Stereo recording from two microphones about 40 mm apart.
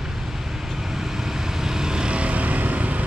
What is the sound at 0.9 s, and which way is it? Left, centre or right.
Vehicle, centre.